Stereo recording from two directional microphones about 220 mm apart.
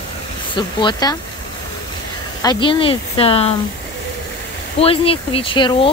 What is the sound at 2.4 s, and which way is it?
Speech, 20° left (ahead or behind).